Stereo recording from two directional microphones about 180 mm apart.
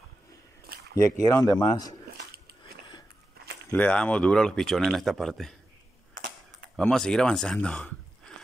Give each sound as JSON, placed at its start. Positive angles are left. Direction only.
{"t": 1.2, "sound": "speech", "side_deg": 20}
{"t": 3.7, "sound": "speech", "side_deg": 5}
{"t": 6.8, "sound": "speech", "side_deg": 5}